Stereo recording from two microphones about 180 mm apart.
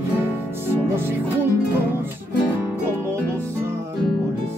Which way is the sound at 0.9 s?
10° right (ahead or behind).